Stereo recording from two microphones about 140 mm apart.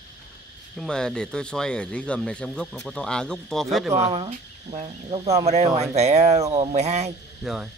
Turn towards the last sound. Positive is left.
turn(degrees=0)  # may be behind; listen again after turning